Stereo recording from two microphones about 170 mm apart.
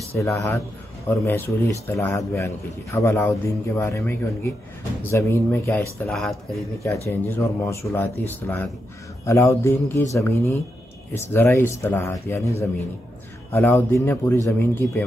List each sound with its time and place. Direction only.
0.2 s a man's voice: 20° left (ahead or behind)
6.0 s speech: centre (ahead or behind)
6.8 s a man's voice: 15° left (ahead or behind)